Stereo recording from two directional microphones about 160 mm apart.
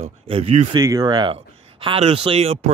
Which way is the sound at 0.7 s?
25° right (ahead or behind).